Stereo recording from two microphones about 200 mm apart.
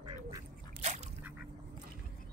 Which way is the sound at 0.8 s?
35° right (ahead or behind).